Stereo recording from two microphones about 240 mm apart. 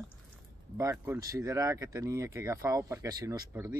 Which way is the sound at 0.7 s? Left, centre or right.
Centre.